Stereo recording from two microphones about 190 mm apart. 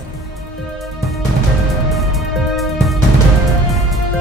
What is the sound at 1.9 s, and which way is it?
Music, centre (ahead or behind).